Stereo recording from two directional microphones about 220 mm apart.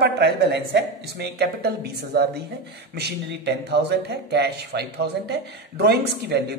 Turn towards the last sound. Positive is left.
turn(degrees=-45)  # may be behind; listen again after turning